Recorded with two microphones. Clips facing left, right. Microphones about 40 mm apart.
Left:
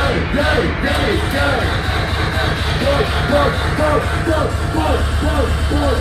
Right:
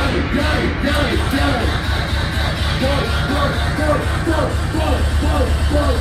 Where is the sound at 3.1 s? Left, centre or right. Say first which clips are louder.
Left 4 dB; left.